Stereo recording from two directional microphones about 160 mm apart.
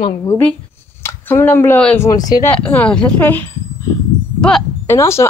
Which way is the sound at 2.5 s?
10° left (ahead or behind).